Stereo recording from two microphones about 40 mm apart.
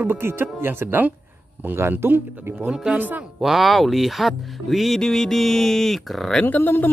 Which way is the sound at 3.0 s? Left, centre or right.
Right.